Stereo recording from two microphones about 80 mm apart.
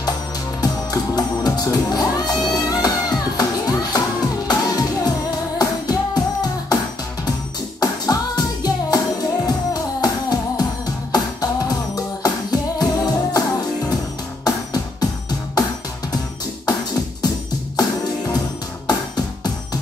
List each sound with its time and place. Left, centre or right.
0.6 s music: left
7.8 s music: left
17.7 s music: left